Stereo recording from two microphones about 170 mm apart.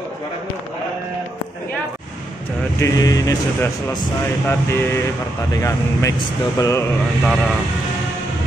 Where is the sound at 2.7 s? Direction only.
20° left (ahead or behind).